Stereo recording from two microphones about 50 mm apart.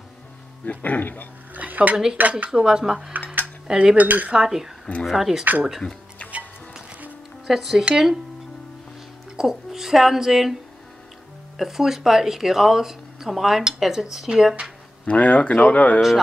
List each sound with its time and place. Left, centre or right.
0.7 s speech: left
1.5 s speech: right
2.2 s cutlery: right
2.5 s speech: centre
3.6 s cutlery: centre
3.9 s cutlery: right
4.3 s speech: centre
7.4 s speech: centre
9.4 s speech: centre
11.5 s speech: centre
15.0 s speech: left